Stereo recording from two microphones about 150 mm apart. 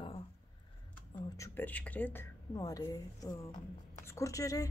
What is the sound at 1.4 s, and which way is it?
A woman's voice, 15° left (ahead or behind).